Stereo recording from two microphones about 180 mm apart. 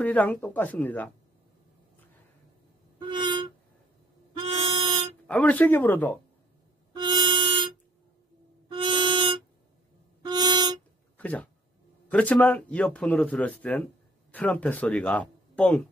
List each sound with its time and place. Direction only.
0.0 s speech: 10° left (ahead or behind)
3.0 s music: 25° right (ahead or behind)
5.2 s speech: 10° left (ahead or behind)
6.9 s music: 25° right (ahead or behind)
11.1 s a sound: 10° left (ahead or behind)
12.1 s speech: 10° left (ahead or behind)